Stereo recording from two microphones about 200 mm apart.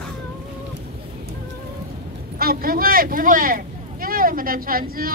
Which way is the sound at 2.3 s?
50° right (ahead or behind).